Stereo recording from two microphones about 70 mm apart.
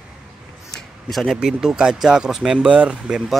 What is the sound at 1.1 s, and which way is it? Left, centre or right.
Speech, centre.